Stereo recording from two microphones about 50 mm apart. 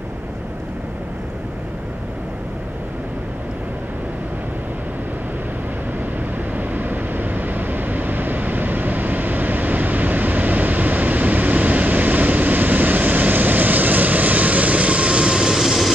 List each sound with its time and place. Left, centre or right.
6.5 s vehicle: right; by 15.9 s centre